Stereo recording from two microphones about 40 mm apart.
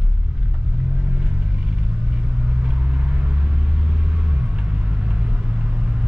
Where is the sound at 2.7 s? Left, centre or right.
Right.